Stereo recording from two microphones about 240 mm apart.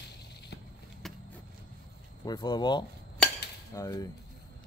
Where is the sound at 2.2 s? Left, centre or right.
Centre.